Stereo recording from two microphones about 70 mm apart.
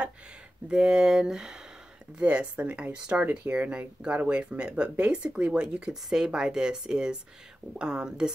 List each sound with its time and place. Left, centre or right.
0.7 s speech: centre